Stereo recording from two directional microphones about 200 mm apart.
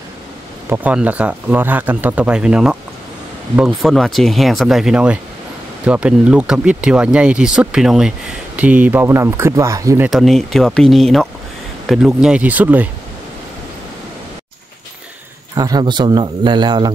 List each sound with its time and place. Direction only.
0.7 s speech: 10° right (ahead or behind)
10.0 s speech: centre (ahead or behind)
15.5 s a man's voice: 20° right (ahead or behind)